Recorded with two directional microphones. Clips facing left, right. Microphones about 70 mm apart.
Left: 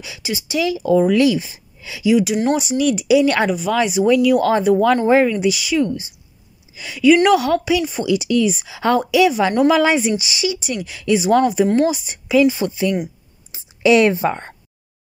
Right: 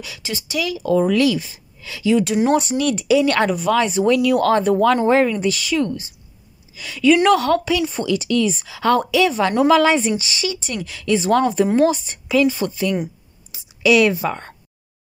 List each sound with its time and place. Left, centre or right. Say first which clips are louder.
0.0 s a woman's voice: left 3 dB; centre
13.5 s a woman's voice: left 2 dB; left